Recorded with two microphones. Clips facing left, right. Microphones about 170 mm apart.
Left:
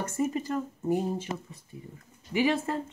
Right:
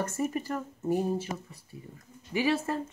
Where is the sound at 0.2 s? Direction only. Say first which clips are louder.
Left 6 dB; 20° left (ahead or behind).